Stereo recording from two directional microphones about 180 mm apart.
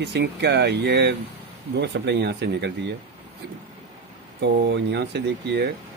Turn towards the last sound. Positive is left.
turn(degrees=-70)  # may be behind; listen again after turning